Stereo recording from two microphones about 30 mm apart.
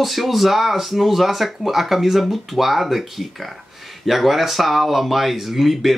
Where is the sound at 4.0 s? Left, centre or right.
Centre.